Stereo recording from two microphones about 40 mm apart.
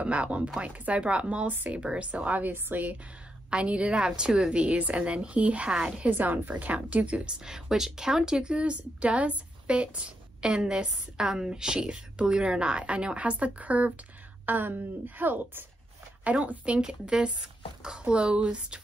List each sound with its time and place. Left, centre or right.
0.0 s a woman's voice: right
3.4 s a woman's voice: right
4.6 s a woman's voice: right
6.0 s a woman's voice: right
14.4 s a woman's voice: right
16.3 s a woman's voice: right